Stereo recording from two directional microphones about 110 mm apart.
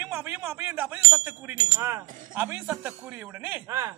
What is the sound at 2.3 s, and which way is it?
Speech, 15° right (ahead or behind).